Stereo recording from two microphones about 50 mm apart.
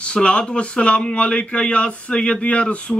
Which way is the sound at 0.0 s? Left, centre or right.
Left.